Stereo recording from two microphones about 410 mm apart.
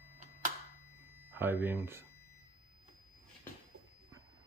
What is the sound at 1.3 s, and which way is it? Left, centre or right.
Speech, centre.